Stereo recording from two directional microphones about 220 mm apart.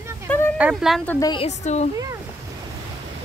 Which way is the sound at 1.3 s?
30° left (ahead or behind).